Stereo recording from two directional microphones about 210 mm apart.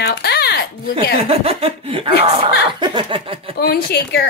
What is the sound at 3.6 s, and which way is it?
Speech, 50° left (ahead or behind).